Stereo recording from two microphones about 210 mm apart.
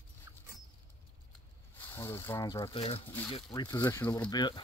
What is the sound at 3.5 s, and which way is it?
Speech, 15° left (ahead or behind).